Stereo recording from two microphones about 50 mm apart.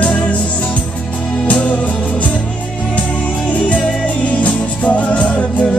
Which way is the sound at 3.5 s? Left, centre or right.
Left.